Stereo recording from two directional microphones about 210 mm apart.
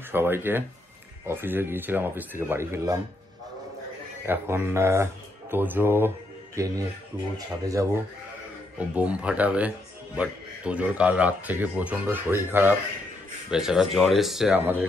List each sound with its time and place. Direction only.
0.1 s speech: 10° right (ahead or behind)
4.3 s speech: 10° right (ahead or behind)